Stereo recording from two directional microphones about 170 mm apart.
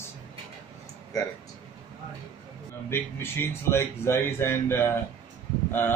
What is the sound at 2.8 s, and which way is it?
Speech, 15° left (ahead or behind).